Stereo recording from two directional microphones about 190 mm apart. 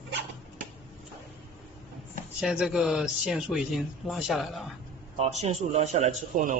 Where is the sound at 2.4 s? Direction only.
5° right (ahead or behind).